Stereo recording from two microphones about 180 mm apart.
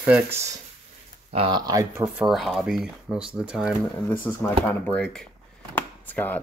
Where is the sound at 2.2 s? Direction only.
Centre (ahead or behind).